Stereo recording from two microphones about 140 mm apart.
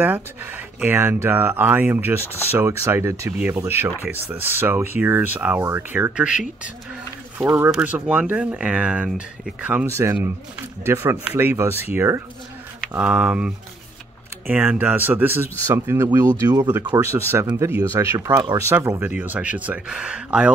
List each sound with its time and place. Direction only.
0.0 s speech: 15° right (ahead or behind)
14.5 s speech: 10° right (ahead or behind)